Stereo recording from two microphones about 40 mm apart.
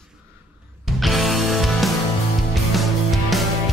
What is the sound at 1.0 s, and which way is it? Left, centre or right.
Music, centre.